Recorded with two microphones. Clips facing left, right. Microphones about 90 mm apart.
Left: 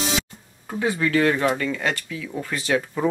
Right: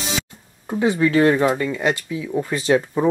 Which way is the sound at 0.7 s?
25° right (ahead or behind).